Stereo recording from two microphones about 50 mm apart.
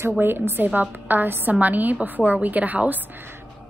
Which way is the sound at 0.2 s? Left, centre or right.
Right.